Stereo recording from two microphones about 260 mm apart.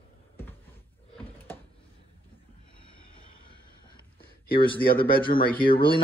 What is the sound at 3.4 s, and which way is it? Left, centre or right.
Vehicle, centre.